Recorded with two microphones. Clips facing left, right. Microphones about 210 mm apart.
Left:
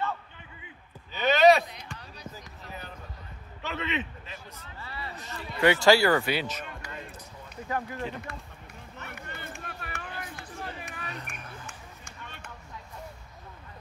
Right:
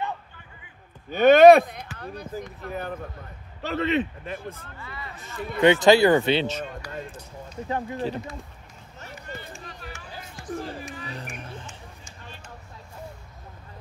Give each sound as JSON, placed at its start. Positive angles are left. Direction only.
{"t": 1.1, "sound": "speech", "side_deg": -50}
{"t": 3.6, "sound": "speech", "side_deg": -40}
{"t": 4.7, "sound": "speech", "side_deg": 30}
{"t": 5.6, "sound": "speech", "side_deg": -20}
{"t": 7.6, "sound": "speech", "side_deg": -25}
{"t": 9.0, "sound": "a sound", "side_deg": 60}
{"t": 11.3, "sound": "a sound", "side_deg": -25}
{"t": 11.6, "sound": "run", "side_deg": 60}